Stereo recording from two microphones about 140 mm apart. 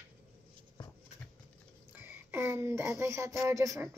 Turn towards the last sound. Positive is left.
turn(degrees=-20)  # may be behind; listen again after turning